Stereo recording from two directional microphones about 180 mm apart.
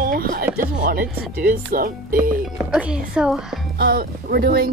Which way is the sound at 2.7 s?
5° right (ahead or behind).